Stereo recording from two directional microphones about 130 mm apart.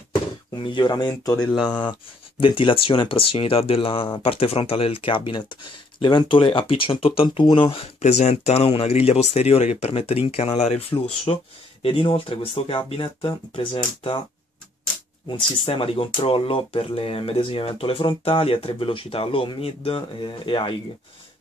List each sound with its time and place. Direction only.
0.6 s speech: 40° left (ahead or behind)
1.6 s speech: 10° left (ahead or behind)
2.4 s speech: 40° left (ahead or behind)
8.0 s speech: 60° left (ahead or behind)
11.3 s speech: 35° left (ahead or behind)
11.8 s speech: 45° left (ahead or behind)
15.2 s speech: 45° left (ahead or behind)